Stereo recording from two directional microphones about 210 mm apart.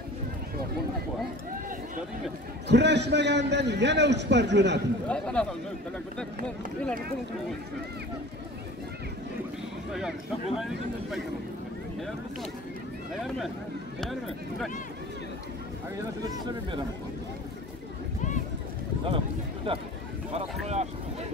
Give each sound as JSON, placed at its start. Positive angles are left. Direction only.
{"t": 2.7, "sound": "a man's voice", "side_deg": -55}
{"t": 5.0, "sound": "speech", "side_deg": 5}
{"t": 9.9, "sound": "speech", "side_deg": 0}
{"t": 19.0, "sound": "speech", "side_deg": -25}
{"t": 20.3, "sound": "a sound", "side_deg": -30}